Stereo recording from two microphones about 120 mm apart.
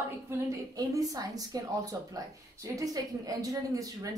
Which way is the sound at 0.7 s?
30° right (ahead or behind).